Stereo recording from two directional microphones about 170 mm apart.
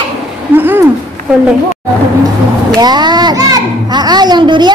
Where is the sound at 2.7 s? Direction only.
25° right (ahead or behind).